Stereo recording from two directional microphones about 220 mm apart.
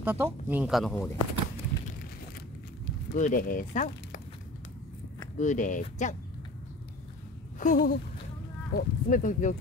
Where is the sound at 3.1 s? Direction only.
40° left (ahead or behind).